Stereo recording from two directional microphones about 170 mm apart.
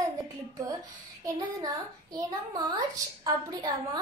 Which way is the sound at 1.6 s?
20° right (ahead or behind).